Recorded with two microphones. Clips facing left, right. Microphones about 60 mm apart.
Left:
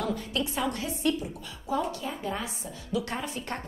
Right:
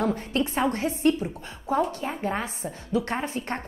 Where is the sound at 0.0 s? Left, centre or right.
Right.